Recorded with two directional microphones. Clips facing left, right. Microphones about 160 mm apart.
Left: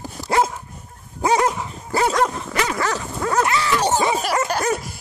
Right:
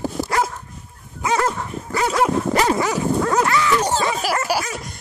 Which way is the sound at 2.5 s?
35° right (ahead or behind).